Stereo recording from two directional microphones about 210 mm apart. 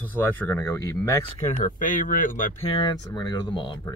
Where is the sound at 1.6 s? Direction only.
40° left (ahead or behind).